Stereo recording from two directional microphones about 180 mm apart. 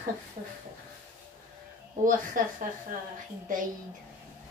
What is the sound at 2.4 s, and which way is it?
A woman's voice, 50° right (ahead or behind).